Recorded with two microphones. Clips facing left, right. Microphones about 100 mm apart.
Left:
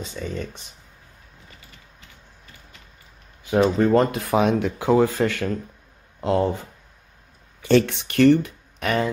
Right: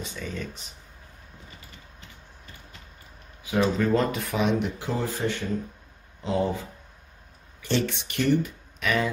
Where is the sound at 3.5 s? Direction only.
40° left (ahead or behind).